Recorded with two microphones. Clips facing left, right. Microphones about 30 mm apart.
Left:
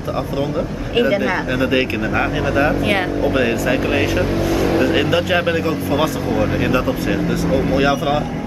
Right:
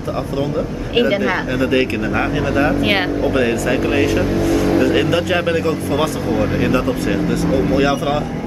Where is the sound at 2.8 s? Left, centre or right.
Right.